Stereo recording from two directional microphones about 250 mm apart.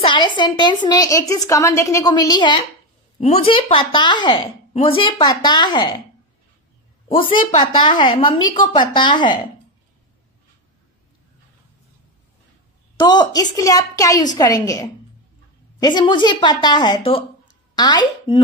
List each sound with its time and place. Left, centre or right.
0.0 s a woman's voice: centre
7.1 s a woman's voice: left
13.0 s a woman's voice: centre